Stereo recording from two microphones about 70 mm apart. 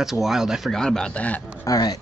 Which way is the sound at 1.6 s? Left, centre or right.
Left.